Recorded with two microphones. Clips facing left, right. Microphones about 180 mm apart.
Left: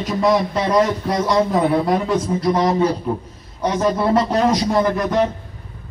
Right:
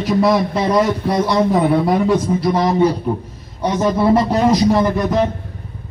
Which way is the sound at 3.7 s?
5° right (ahead or behind).